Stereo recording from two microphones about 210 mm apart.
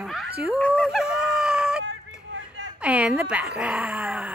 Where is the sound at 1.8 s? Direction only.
60° right (ahead or behind).